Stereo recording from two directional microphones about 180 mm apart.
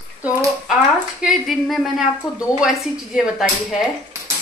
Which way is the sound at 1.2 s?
Centre (ahead or behind).